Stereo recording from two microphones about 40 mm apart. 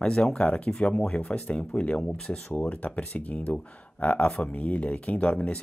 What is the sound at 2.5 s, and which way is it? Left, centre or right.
Speech, left.